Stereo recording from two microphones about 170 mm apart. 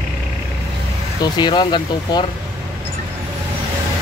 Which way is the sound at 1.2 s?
25° left (ahead or behind).